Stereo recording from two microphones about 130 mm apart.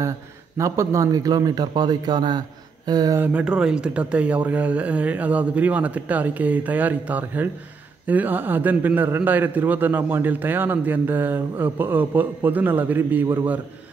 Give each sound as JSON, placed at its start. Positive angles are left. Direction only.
{"t": 0.6, "sound": "a man's voice", "side_deg": -25}
{"t": 3.2, "sound": "a man's voice", "side_deg": -10}